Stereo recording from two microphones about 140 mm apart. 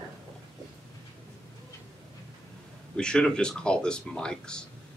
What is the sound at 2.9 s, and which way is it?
Speech, 5° left (ahead or behind).